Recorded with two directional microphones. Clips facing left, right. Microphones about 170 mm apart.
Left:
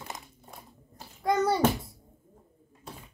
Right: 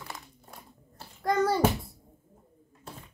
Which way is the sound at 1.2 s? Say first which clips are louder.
Even; centre (ahead or behind).